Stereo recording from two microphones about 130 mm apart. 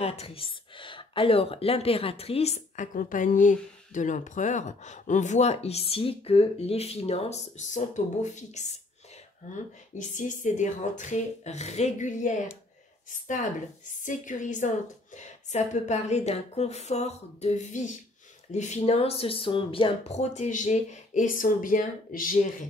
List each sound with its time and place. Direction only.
0.0 s speech: 50° left (ahead or behind)
9.9 s speech: 75° left (ahead or behind)
14.0 s speech: 80° left